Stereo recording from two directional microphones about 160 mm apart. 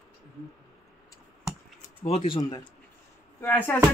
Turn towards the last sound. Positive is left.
turn(degrees=10)  # may be behind; listen again after turning